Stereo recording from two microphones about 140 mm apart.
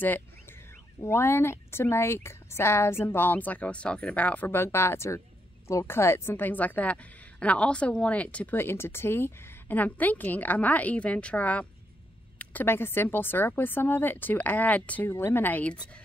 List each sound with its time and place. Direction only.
1.0 s a woman's voice: 20° left (ahead or behind)